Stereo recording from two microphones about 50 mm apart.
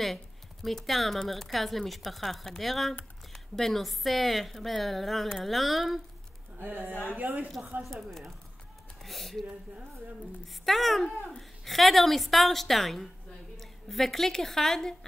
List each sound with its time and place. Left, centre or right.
0.0 s speech: centre
6.6 s speech: right
7.1 s speech: right
7.8 s a woman's voice: centre